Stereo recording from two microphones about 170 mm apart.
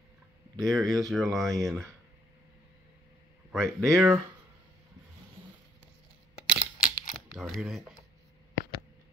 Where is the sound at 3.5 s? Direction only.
Centre (ahead or behind).